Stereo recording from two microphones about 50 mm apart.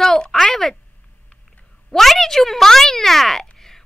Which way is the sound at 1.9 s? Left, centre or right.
Centre.